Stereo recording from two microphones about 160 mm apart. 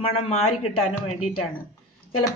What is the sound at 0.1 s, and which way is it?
Speech, 40° left (ahead or behind).